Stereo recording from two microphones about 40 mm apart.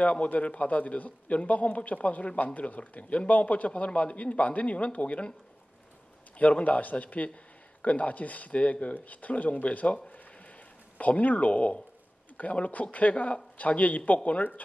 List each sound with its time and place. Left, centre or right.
0.0 s speech: left
6.3 s speech: left